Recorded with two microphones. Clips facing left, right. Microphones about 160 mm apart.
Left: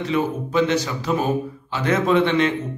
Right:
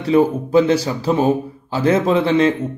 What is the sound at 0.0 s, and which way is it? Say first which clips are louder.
A man's voice: right 7 dB; 35° right (ahead or behind).